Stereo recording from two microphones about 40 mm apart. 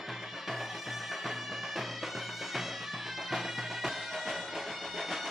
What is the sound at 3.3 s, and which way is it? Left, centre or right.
Music, centre.